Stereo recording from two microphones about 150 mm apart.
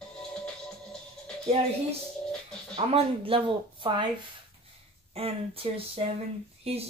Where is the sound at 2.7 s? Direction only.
40° right (ahead or behind).